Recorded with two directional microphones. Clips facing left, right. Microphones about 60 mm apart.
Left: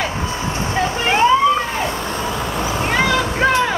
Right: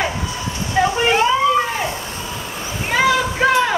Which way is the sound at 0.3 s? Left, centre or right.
Left.